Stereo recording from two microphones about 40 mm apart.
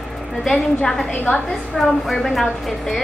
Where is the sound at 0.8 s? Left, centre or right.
Centre.